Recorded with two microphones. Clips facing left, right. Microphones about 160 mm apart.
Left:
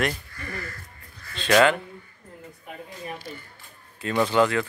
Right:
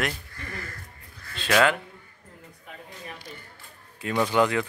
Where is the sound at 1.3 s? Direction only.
5° right (ahead or behind).